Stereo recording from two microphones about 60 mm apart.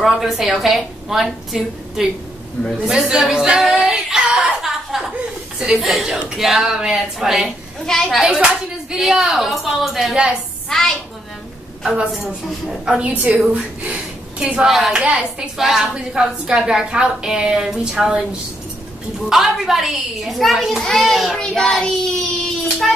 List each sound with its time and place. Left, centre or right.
0.0 s a woman's voice: centre
7.8 s a woman's voice: centre
8.2 s a woman's voice: centre
10.7 s child singing: centre
11.8 s a woman's voice: centre
13.0 s a woman's voice: right
14.7 s a woman's voice: centre
19.2 s a woman's voice: centre
21.4 s child singing: centre